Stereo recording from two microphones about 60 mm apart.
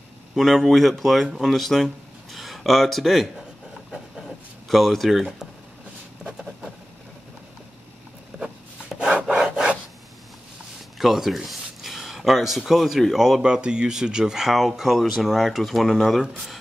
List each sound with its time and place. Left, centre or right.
0.4 s speech: centre
4.6 s speech: centre
6.2 s vehicle: centre
8.3 s a sound: centre
8.9 s wood: centre
11.0 s speech: centre
13.4 s speech: centre